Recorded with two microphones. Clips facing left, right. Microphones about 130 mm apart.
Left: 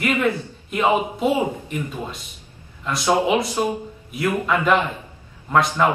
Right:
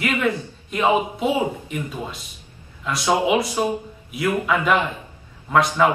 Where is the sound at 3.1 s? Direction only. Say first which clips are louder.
Even; 10° right (ahead or behind).